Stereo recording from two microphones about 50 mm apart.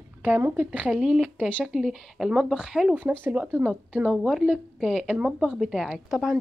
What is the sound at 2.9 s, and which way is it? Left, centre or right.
Speech, right.